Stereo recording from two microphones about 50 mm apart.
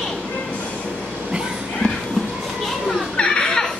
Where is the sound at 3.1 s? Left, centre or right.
Centre.